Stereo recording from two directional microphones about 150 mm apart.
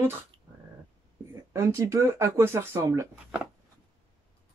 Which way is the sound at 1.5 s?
20° right (ahead or behind).